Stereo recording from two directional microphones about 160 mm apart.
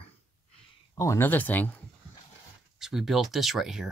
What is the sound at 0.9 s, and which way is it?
Speech, 20° left (ahead or behind).